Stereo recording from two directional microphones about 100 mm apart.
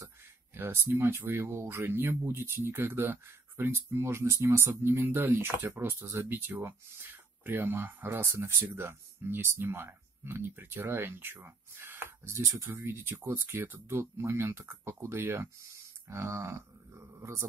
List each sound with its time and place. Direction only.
0.6 s speech: 20° right (ahead or behind)